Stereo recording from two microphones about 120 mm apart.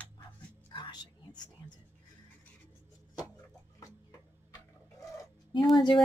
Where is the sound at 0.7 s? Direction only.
45° left (ahead or behind).